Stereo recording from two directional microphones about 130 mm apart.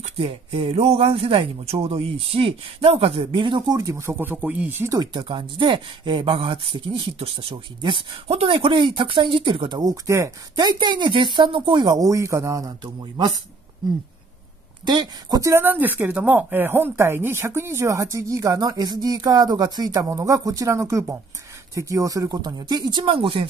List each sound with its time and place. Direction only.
0.2 s a man's voice: 50° right (ahead or behind); by 4.9 s 15° right (ahead or behind)
4.9 s speech: 35° right (ahead or behind)
14.9 s speech: 35° right (ahead or behind)
15.5 s speech: 15° right (ahead or behind); by 23.4 s 40° right (ahead or behind)